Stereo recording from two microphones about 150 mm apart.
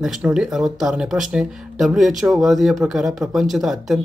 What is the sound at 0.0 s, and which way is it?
Speech, 5° right (ahead or behind).